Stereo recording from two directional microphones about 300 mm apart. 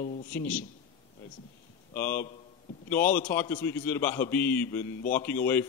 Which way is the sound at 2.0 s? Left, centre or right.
Centre.